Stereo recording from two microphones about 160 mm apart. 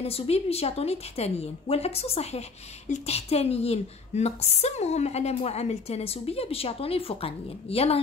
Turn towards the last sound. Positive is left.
turn(degrees=40)  # may be behind; listen again after turning